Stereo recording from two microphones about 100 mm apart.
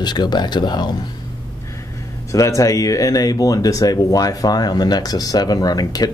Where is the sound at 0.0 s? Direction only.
45° left (ahead or behind).